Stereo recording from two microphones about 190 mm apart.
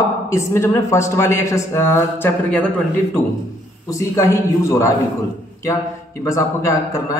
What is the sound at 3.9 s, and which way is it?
Speech, 15° left (ahead or behind).